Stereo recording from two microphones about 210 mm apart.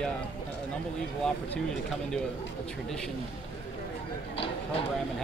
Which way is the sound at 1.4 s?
5° left (ahead or behind).